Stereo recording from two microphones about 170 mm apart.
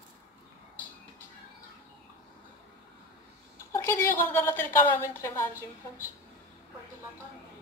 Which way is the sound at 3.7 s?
15° left (ahead or behind).